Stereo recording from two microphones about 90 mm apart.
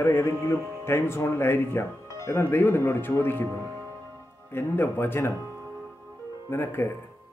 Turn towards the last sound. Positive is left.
turn(degrees=25)  # may be behind; listen again after turning